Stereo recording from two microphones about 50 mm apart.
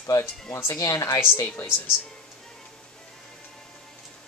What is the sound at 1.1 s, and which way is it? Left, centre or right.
Speech, left.